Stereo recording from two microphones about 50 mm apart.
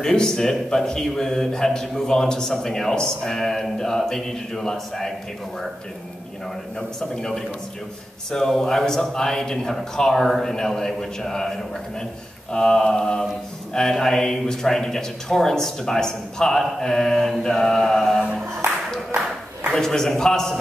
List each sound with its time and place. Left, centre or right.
0.0 s speech: centre
7.0 s speech: centre
12.5 s speech: centre
19.7 s speech: centre